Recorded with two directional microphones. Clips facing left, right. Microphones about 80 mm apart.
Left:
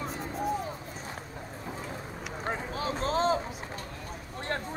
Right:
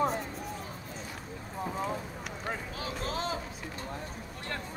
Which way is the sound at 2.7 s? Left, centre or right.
Left.